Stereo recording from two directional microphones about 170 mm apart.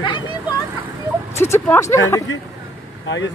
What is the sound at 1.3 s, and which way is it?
Speech, 15° left (ahead or behind).